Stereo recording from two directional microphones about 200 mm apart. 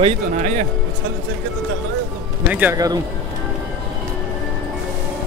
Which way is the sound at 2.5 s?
10° right (ahead or behind).